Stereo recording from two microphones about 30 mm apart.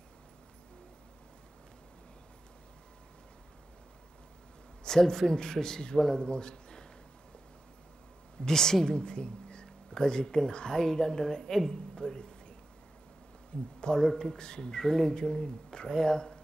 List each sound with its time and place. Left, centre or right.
4.8 s speech: centre
8.5 s speech: centre
13.7 s a man's voice: left